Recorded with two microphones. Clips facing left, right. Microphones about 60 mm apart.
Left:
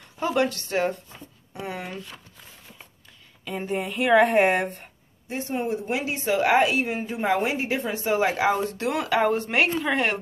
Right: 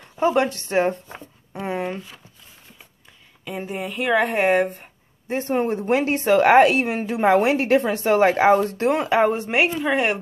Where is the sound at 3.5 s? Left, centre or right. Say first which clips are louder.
Even; centre.